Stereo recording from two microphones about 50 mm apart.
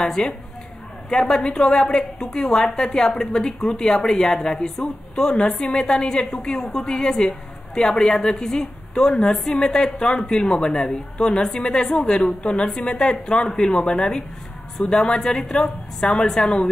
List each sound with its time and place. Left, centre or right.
0.0 s a woman's voice: centre
13.7 s a woman's voice: centre